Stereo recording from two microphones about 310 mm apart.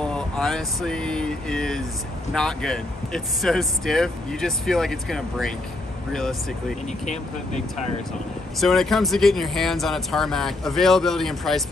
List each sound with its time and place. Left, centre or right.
0.0 s speech: centre
8.5 s speech: centre